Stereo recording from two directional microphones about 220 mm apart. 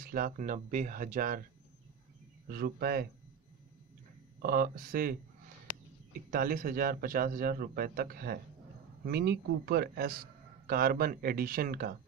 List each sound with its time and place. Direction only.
0.0 s a man's voice: 40° right (ahead or behind)
2.4 s speech: 45° right (ahead or behind)
4.4 s a man's voice: 40° right (ahead or behind)
6.3 s a man's voice: 40° right (ahead or behind)